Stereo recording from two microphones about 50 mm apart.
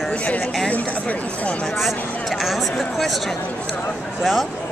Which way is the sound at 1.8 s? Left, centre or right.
Centre.